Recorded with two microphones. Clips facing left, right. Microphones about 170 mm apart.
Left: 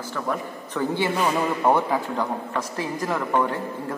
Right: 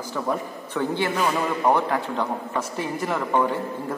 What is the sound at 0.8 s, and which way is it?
A man's voice, 5° left (ahead or behind).